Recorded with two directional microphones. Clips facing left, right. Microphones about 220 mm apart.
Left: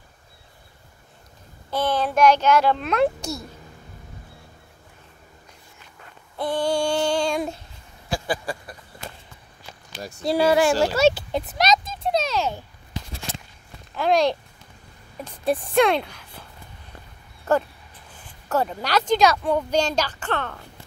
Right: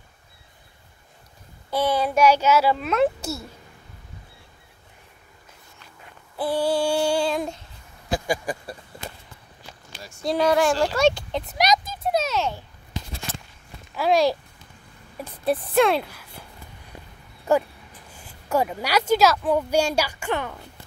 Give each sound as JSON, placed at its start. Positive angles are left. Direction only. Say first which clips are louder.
{"t": 1.7, "sound": "speech", "louder": "right 1 dB", "side_deg": -10}
{"t": 6.3, "sound": "child singing", "louder": "right 1 dB", "side_deg": -5}
{"t": 8.1, "sound": "a sound", "louder": "right 2 dB", "side_deg": -15}
{"t": 10.2, "sound": "speech", "louder": "left 1 dB", "side_deg": 10}
{"t": 11.5, "sound": "speech", "louder": "even", "side_deg": -15}
{"t": 11.9, "sound": "a sound", "louder": "even", "side_deg": -5}
{"t": 13.9, "sound": "speech", "louder": "even", "side_deg": -5}
{"t": 15.4, "sound": "speech", "louder": "even", "side_deg": 0}
{"t": 18.5, "sound": "speech", "louder": "even", "side_deg": -10}